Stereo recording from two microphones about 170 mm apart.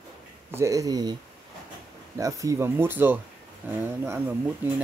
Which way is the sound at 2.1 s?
20° right (ahead or behind).